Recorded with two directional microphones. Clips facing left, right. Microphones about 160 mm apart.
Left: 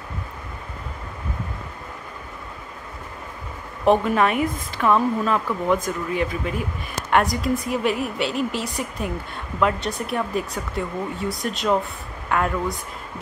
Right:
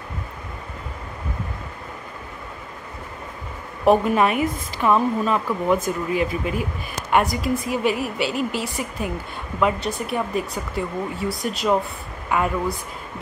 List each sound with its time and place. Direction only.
3.8 s a woman's voice: 5° right (ahead or behind)